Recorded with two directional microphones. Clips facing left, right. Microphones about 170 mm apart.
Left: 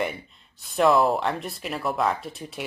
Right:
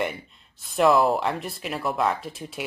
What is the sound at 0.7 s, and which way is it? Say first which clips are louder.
Speech: even; centre (ahead or behind).